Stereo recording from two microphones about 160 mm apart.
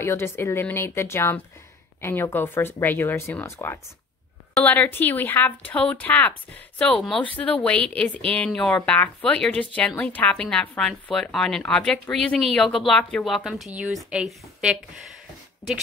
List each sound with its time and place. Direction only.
0.0 s speech: 15° left (ahead or behind); by 14.8 s 5° right (ahead or behind)